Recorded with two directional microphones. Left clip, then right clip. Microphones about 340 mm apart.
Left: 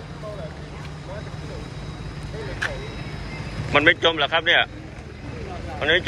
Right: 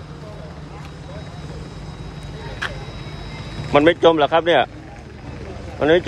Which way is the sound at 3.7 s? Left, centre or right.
Centre.